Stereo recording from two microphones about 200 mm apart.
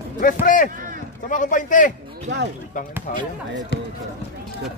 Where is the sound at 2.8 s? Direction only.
40° left (ahead or behind).